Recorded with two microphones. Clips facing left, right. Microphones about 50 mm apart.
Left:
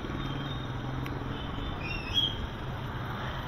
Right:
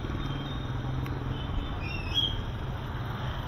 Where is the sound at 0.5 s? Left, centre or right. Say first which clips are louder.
Right 1 dB; centre.